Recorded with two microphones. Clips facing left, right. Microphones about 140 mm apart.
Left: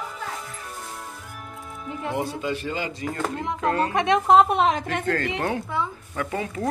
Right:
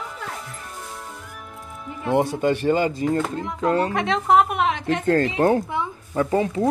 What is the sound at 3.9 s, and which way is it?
Speech, 20° left (ahead or behind).